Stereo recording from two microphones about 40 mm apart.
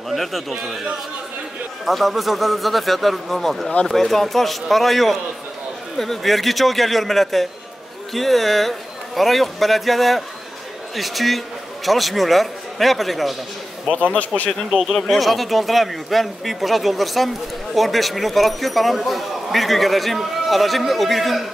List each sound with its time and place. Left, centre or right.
0.1 s speech: centre
1.9 s a man's voice: centre
14.1 s speech: left
14.8 s speech: centre